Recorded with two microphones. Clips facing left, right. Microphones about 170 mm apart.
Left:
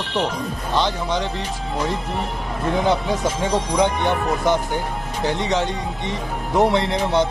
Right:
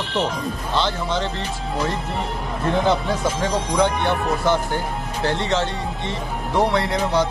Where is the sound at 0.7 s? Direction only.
15° left (ahead or behind).